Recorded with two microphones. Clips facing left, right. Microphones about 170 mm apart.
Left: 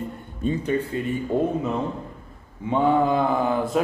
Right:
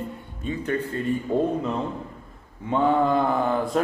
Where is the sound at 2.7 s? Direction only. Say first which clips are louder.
Left 1 dB; centre (ahead or behind).